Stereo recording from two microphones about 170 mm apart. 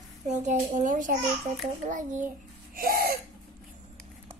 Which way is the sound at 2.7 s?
60° right (ahead or behind).